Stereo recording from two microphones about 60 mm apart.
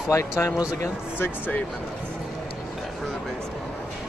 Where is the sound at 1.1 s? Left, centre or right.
Left.